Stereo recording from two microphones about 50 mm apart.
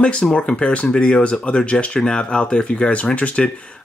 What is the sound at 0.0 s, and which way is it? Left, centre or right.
Speech, centre.